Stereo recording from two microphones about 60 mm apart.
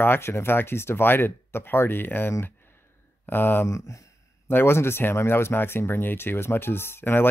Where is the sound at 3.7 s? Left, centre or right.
Left.